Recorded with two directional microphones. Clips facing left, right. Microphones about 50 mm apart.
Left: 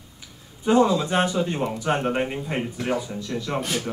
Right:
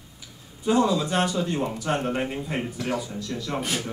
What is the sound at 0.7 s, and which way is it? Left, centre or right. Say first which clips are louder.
Speech: left 3 dB; left.